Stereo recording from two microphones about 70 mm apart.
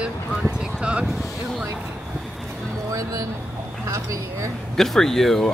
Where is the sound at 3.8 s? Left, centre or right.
Right.